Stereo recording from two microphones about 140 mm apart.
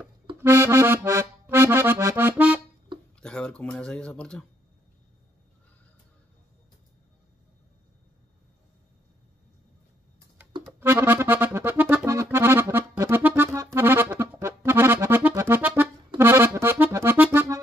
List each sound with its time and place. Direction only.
0.4 s accordion: 20° right (ahead or behind)
3.2 s a sound: 5° left (ahead or behind)
10.8 s music: 15° right (ahead or behind)
13.6 s accordion: 20° right (ahead or behind)